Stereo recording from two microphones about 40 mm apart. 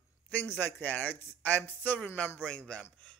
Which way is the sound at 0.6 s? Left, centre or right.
Left.